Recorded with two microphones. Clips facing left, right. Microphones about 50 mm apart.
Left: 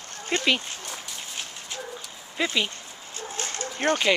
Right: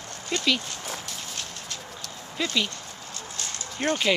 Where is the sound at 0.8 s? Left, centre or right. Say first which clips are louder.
Right 2 dB; centre.